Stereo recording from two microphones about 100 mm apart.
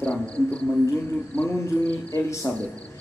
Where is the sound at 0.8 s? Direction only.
25° left (ahead or behind).